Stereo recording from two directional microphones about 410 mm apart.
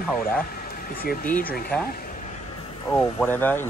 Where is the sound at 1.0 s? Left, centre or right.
Centre.